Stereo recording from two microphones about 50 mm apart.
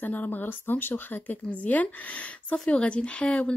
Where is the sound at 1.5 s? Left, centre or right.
Left.